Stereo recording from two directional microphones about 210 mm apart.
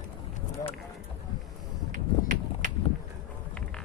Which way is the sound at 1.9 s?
35° right (ahead or behind).